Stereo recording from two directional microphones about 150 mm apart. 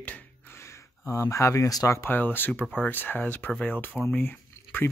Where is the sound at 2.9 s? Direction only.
15° left (ahead or behind).